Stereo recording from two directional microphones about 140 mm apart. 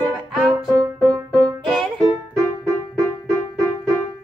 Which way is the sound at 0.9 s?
10° left (ahead or behind).